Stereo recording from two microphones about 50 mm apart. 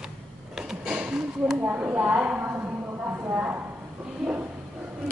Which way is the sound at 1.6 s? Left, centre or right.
Right.